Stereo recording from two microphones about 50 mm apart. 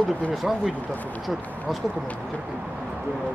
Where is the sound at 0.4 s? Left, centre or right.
Centre.